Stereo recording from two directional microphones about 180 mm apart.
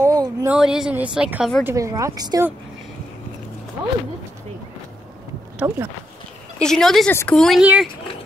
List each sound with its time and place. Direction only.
0.0 s a sound: 20° right (ahead or behind)
0.5 s speech: 5° right (ahead or behind)
1.6 s speech: 15° right (ahead or behind)
5.6 s speech: 15° right (ahead or behind)
6.6 s speech: 5° left (ahead or behind)